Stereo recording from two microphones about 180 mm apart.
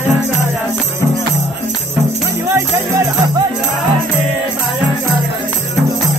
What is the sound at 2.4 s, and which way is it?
Music, 15° right (ahead or behind).